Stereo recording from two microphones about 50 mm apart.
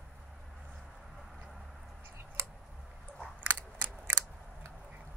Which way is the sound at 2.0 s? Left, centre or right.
Right.